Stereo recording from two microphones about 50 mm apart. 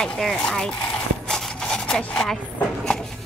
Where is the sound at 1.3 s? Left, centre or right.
Centre.